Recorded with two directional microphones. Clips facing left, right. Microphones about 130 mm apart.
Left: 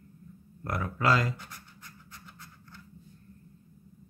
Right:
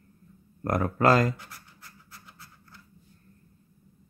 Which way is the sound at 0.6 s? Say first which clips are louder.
Right 6 dB; 50° right (ahead or behind).